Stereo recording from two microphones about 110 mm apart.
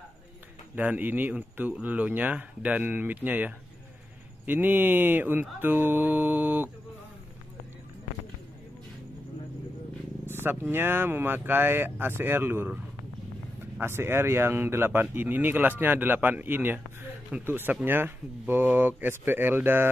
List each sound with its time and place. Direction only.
0.7 s speech: 15° right (ahead or behind)
10.3 s speech: 20° right (ahead or behind)
13.7 s speech: 20° right (ahead or behind)